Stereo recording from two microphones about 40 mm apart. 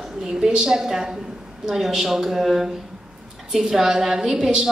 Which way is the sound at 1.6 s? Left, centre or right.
Centre.